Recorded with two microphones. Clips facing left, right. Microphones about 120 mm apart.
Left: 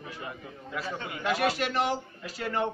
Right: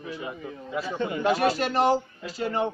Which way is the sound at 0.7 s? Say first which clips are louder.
Right 7 dB; 25° right (ahead or behind).